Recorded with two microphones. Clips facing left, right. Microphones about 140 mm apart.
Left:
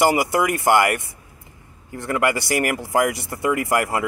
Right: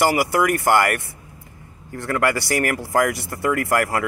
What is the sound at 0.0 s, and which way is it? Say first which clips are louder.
Speech: even; 20° left (ahead or behind).